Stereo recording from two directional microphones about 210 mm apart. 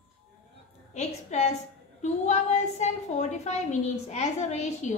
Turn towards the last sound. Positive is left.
turn(degrees=35)  # may be behind; listen again after turning